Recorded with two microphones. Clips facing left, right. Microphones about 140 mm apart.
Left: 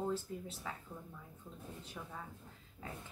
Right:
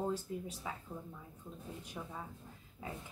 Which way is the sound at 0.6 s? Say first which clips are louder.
Even; 15° right (ahead or behind).